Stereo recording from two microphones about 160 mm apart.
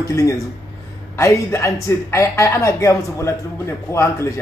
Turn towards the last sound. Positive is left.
turn(degrees=20)  # may be behind; listen again after turning